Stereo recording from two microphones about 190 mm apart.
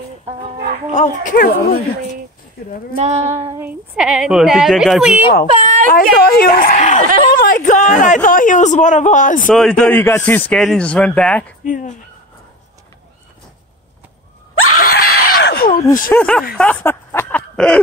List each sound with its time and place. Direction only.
0.4 s speech: 50° right (ahead or behind)
0.9 s a man's voice: 40° left (ahead or behind)
3.0 s female singing: 35° right (ahead or behind)
3.5 s a woman's voice: 5° right (ahead or behind)
5.6 s a sound: 40° right (ahead or behind)
5.9 s a sound: 50° left (ahead or behind)
7.3 s a man's voice: 45° left (ahead or behind)
9.5 s speech: 5° left (ahead or behind)
11.6 s speech: 45° left (ahead or behind)
14.8 s screaming: 50° left (ahead or behind)
16.1 s speech: 5° left (ahead or behind)
16.5 s a sound: 10° left (ahead or behind)